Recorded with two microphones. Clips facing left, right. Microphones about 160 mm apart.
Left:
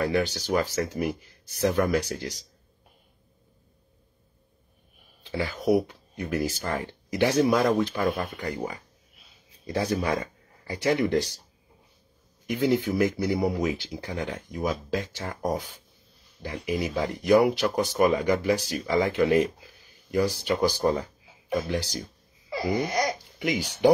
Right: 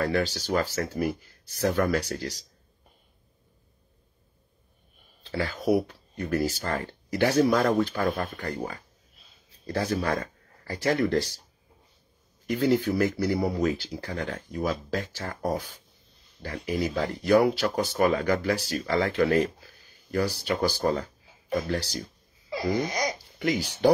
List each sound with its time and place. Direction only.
0.1 s speech: 15° left (ahead or behind)
5.2 s speech: 10° left (ahead or behind)
12.4 s speech: 15° left (ahead or behind)
22.7 s speech: centre (ahead or behind)